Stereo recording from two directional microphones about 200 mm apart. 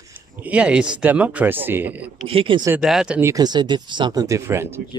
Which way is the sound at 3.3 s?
20° right (ahead or behind).